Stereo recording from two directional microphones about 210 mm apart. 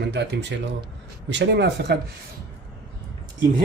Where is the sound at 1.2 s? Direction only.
55° right (ahead or behind).